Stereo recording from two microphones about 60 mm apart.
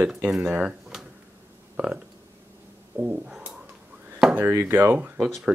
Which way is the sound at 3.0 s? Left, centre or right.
Right.